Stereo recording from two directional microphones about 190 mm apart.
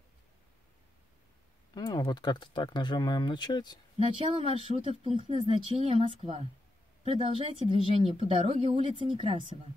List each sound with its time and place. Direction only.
1.8 s speech: 20° left (ahead or behind)
4.0 s speech: 30° right (ahead or behind)